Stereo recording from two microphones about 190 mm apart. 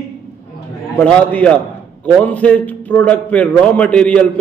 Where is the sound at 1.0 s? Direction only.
5° left (ahead or behind).